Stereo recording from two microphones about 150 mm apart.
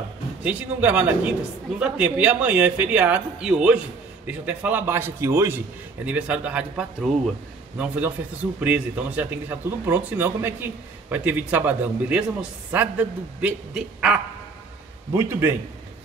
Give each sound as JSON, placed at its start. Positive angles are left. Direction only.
{"t": 0.4, "sound": "speech", "side_deg": -10}
{"t": 6.0, "sound": "speech", "side_deg": -10}
{"t": 15.1, "sound": "speech", "side_deg": -15}